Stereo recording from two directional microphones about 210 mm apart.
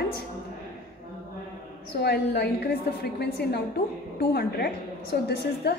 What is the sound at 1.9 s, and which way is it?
Speech, 50° left (ahead or behind).